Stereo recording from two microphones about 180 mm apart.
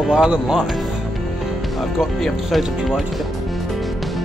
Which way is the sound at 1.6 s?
Centre (ahead or behind).